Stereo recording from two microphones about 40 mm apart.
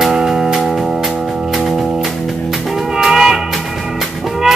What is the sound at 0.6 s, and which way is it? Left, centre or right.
Music, centre.